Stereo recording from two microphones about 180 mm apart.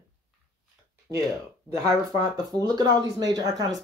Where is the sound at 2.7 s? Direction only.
20° right (ahead or behind).